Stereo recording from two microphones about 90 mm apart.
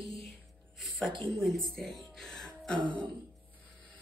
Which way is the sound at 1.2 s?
Centre (ahead or behind).